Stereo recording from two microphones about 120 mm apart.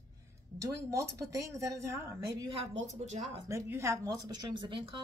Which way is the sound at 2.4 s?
50° right (ahead or behind).